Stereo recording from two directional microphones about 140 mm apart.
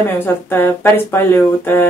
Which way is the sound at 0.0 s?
15° left (ahead or behind).